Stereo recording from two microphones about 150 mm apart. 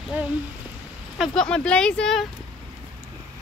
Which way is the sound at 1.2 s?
5° left (ahead or behind).